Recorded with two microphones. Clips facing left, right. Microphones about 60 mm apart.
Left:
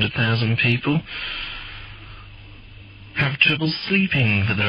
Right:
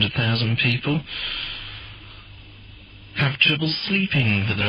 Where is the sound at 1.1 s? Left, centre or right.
Left.